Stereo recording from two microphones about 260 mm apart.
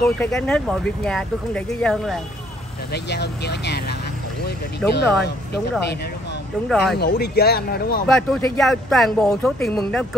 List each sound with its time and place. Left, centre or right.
0.2 s speech: centre
2.9 s speech: left
4.8 s speech: left
6.7 s speech: centre
7.0 s speech: left
8.1 s speech: centre